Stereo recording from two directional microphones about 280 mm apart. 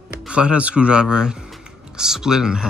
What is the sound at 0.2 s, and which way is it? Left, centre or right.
Speech, centre.